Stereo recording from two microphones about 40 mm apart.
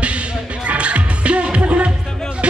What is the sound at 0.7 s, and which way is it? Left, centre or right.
Music, right.